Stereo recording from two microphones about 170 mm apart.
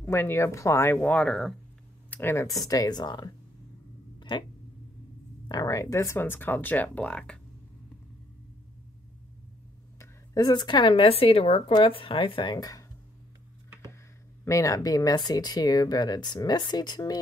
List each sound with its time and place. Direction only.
0.0 s speech: 15° left (ahead or behind)
4.2 s a sound: 25° left (ahead or behind)
5.5 s speech: 20° left (ahead or behind)
9.9 s a woman's voice: 20° left (ahead or behind)
14.4 s speech: 20° left (ahead or behind)